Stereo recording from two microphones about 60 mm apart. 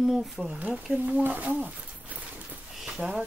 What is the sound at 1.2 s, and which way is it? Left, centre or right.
Speech, right.